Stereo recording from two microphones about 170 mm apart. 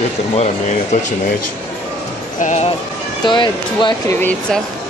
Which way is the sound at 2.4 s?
40° left (ahead or behind).